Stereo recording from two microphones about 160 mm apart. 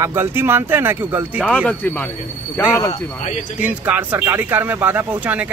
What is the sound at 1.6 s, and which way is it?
Speech, 10° left (ahead or behind).